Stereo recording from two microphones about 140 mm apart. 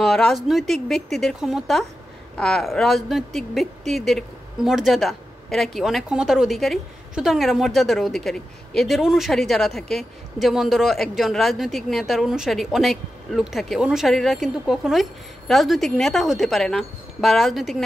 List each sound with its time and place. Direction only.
0.0 s speech: 5° left (ahead or behind)